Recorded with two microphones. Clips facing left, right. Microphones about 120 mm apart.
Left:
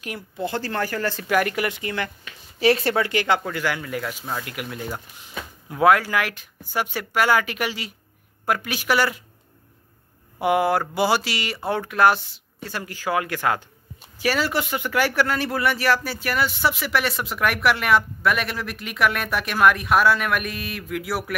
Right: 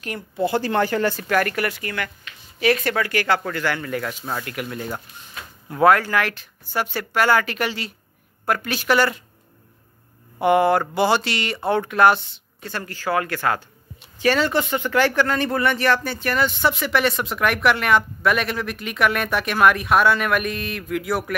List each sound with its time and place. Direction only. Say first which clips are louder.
0.0 s speech: right 5 dB; 5° left (ahead or behind)
0.5 s speech: right 5 dB; 15° right (ahead or behind)
1.2 s speech: right 1 dB; 15° left (ahead or behind)
10.4 s speech: right 3 dB; 5° left (ahead or behind)